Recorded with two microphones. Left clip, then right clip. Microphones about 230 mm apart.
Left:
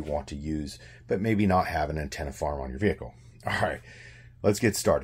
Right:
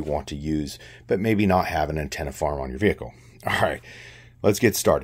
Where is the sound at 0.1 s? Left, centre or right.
Right.